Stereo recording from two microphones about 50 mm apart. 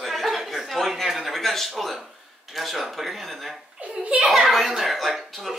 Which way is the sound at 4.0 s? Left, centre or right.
Right.